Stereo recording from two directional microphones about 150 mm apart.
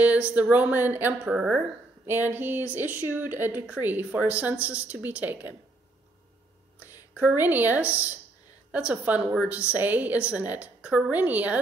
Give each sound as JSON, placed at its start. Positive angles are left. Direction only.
{"t": 0.3, "sound": "speech", "side_deg": -10}
{"t": 6.8, "sound": "speech", "side_deg": -10}